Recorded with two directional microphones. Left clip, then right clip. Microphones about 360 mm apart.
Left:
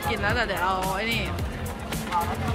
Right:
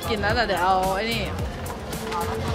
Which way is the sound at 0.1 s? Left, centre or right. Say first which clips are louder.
Right 4 dB; centre.